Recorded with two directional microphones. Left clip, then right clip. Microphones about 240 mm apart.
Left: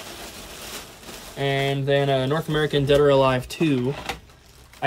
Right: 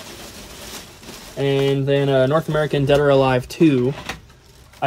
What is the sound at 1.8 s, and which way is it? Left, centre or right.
Speech, centre.